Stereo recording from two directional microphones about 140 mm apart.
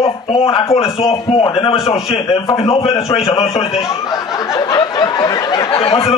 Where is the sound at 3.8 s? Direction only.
25° left (ahead or behind).